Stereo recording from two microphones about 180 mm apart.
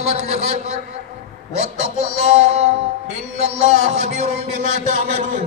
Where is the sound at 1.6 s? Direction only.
35° right (ahead or behind).